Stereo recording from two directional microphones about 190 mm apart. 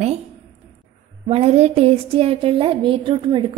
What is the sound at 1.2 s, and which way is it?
A woman's voice, 35° right (ahead or behind).